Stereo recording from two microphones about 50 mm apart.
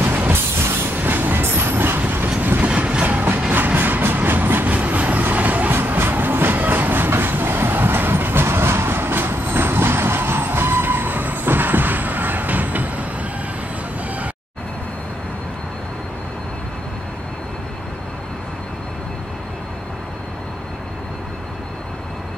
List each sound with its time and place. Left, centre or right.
0.0 s music: right
0.9 s train: right
2.6 s train: right
4.6 s vehicle: right